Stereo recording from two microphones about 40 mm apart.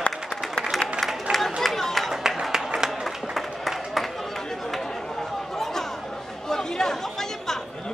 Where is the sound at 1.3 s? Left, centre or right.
Right.